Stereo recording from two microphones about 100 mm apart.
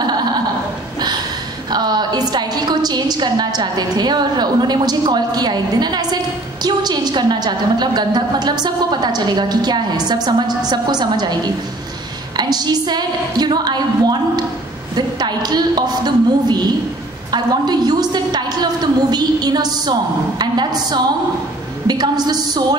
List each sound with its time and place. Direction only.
1.7 s a woman's voice: 45° right (ahead or behind)
12.4 s a sound: 45° right (ahead or behind)
17.3 s a woman's voice: 45° right (ahead or behind)